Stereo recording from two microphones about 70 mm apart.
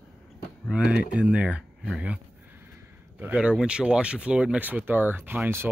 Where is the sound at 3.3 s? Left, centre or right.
Centre.